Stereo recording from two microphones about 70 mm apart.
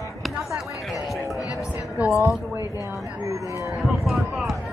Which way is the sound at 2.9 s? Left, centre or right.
Right.